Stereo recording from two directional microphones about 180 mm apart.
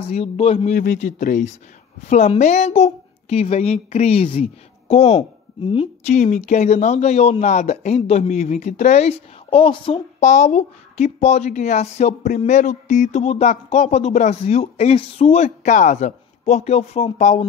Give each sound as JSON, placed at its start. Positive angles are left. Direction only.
{"t": 0.1, "sound": "a woman's voice", "side_deg": 35}
{"t": 0.7, "sound": "a man's voice", "side_deg": 45}